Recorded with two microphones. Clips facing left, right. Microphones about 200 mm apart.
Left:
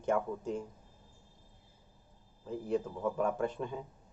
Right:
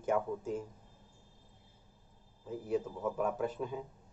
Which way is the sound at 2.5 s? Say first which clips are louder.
Left 1 dB; 5° right (ahead or behind).